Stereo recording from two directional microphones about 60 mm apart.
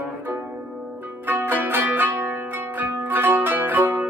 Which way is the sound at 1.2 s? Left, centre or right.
Right.